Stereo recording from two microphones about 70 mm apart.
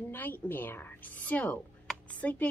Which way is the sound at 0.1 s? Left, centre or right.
Left.